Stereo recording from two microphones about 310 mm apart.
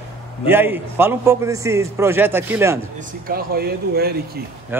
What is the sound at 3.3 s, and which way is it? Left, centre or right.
Speech, right.